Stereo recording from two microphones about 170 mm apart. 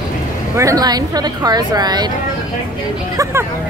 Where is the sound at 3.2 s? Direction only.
15° right (ahead or behind).